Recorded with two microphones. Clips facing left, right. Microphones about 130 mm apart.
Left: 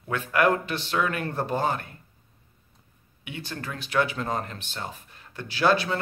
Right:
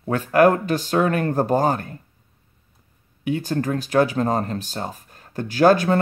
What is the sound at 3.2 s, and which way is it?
A man's voice, 40° right (ahead or behind).